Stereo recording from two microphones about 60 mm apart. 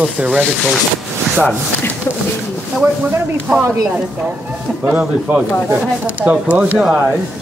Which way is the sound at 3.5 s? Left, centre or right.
Right.